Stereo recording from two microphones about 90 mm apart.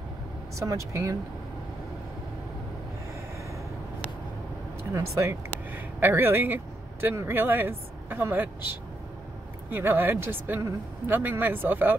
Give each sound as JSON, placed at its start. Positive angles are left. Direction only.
{"t": 0.6, "sound": "speech", "side_deg": -35}
{"t": 4.9, "sound": "speech", "side_deg": -30}
{"t": 9.7, "sound": "speech", "side_deg": -25}